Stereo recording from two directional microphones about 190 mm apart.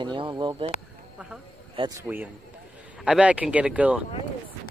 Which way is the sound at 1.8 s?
15° right (ahead or behind).